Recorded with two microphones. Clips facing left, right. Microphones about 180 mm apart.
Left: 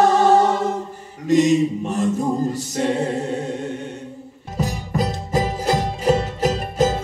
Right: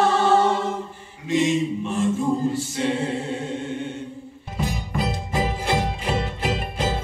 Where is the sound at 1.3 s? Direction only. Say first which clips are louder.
Left 5 dB; 40° left (ahead or behind).